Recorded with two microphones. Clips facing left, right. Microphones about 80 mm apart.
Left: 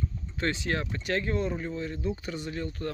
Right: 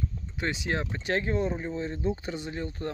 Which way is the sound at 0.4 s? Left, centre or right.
Centre.